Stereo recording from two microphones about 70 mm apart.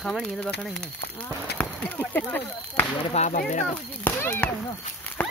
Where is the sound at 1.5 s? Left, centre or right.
Left.